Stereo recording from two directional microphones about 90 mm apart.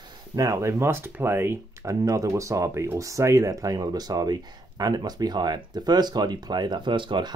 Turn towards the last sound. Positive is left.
turn(degrees=-65)  # may be behind; listen again after turning